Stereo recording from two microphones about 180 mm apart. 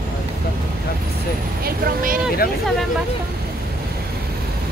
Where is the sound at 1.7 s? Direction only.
55° right (ahead or behind).